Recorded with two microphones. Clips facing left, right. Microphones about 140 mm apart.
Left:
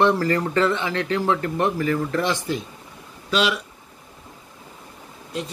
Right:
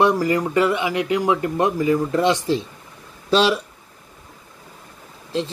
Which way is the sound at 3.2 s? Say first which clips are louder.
Right 5 dB; 35° right (ahead or behind).